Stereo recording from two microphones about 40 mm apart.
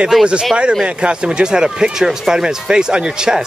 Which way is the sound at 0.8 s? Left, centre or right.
Right.